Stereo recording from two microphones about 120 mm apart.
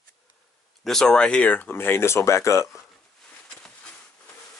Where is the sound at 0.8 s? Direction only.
5° left (ahead or behind); by 2.8 s 25° left (ahead or behind).